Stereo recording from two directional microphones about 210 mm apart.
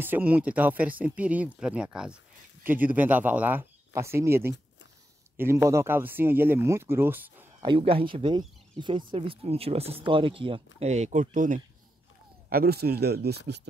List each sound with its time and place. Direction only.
0.0 s speech: 10° right (ahead or behind)
7.6 s speech: 25° right (ahead or behind); by 13.4 s 50° right (ahead or behind)